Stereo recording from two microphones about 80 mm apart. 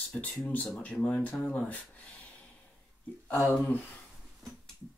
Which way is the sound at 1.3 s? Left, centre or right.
Centre.